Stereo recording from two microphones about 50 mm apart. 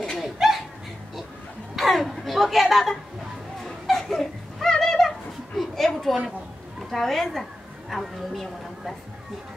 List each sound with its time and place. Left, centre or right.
0.2 s laughter: centre
1.8 s a sound: centre
6.9 s a woman's voice: centre